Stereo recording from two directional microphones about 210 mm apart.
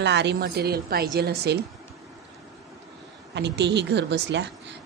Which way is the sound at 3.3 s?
55° right (ahead or behind).